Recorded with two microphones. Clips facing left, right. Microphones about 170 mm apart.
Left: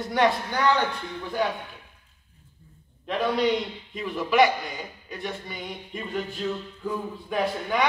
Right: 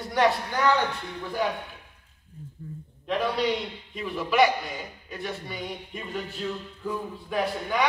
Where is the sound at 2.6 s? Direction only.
70° right (ahead or behind).